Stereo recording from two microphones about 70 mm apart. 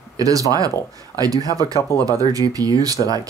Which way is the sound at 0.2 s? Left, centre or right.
Right.